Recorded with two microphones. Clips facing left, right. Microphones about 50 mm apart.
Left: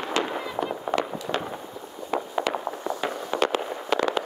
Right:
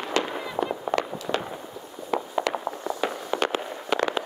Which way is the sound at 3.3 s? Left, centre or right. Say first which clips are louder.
Left 5 dB; centre.